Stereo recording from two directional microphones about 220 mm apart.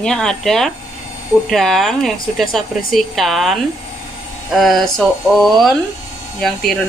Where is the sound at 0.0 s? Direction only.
5° left (ahead or behind).